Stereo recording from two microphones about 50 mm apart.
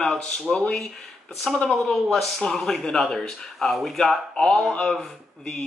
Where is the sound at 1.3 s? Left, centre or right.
Centre.